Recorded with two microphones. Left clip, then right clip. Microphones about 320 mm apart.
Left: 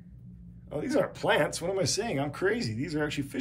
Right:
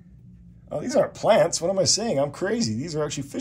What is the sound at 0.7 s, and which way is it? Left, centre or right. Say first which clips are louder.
Speech: right 6 dB; centre.